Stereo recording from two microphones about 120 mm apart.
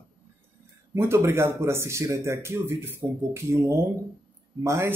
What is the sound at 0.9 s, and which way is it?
Speech, 20° right (ahead or behind).